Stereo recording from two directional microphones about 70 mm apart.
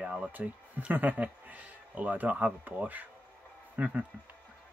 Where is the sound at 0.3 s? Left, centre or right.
Right.